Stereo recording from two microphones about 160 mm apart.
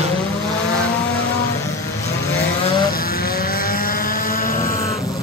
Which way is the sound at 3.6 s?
65° left (ahead or behind).